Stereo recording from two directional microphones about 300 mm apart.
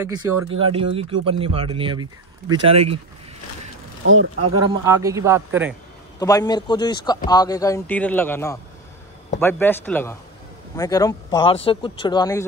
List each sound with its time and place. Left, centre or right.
0.5 s a man's voice: centre
4.0 s speech: right
4.5 s a man's voice: centre
6.1 s speech: centre